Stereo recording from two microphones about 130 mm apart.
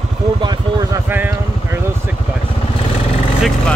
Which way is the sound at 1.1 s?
15° right (ahead or behind).